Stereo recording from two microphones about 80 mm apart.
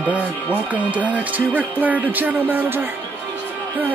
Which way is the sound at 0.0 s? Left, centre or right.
Centre.